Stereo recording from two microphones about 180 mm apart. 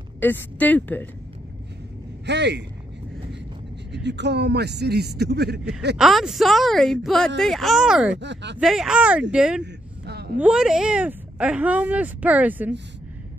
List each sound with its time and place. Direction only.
0.2 s speech: 10° left (ahead or behind)
2.2 s a man's voice: 70° right (ahead or behind)
3.9 s a man's voice: 75° right (ahead or behind)
5.9 s speech: centre (ahead or behind)
8.2 s a man's voice: 75° right (ahead or behind)
8.5 s speech: 5° right (ahead or behind)
9.6 s vehicle: 65° right (ahead or behind)
10.4 s speech: 5° right (ahead or behind)